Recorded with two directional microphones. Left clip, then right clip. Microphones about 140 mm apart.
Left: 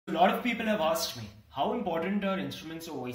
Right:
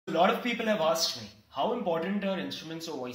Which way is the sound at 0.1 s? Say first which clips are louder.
Even; 20° right (ahead or behind).